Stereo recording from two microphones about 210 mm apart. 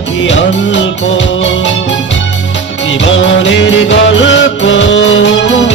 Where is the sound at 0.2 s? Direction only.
60° left (ahead or behind).